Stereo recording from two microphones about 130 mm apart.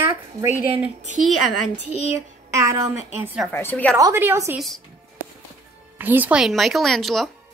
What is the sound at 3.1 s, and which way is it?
Speech, 10° right (ahead or behind).